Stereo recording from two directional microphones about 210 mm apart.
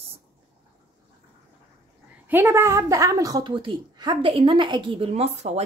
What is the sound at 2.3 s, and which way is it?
A woman's voice, 10° right (ahead or behind).